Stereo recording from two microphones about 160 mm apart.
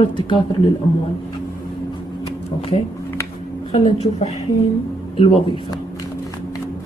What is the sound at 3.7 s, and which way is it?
Speech, 35° left (ahead or behind).